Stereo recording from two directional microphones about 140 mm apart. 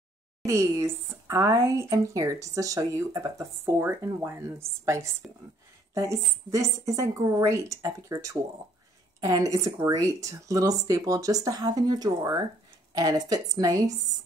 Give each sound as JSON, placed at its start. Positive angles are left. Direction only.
{"t": 0.5, "sound": "speech", "side_deg": -20}